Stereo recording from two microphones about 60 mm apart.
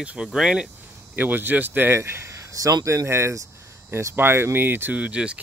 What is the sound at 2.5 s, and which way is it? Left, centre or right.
Speech, right.